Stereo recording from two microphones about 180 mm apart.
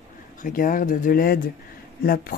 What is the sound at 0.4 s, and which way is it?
Speech, 50° left (ahead or behind).